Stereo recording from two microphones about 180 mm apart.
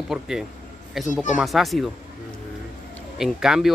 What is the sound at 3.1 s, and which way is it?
Speech, 5° right (ahead or behind).